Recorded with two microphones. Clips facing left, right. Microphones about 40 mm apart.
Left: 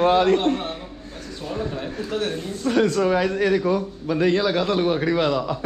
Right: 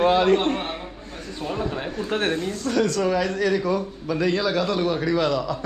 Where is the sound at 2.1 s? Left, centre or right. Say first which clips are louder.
Right 2 dB; right.